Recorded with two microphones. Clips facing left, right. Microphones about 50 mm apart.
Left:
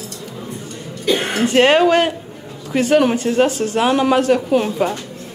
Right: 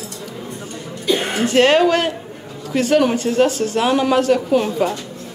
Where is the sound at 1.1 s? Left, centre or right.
Left.